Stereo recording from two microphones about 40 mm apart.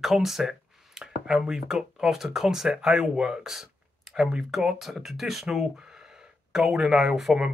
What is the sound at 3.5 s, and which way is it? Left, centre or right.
Speech, centre.